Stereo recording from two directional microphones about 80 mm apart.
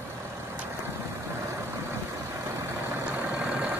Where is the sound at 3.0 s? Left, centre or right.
Right.